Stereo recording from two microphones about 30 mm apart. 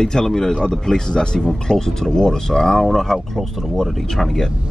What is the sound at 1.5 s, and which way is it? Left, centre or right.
Speech, centre.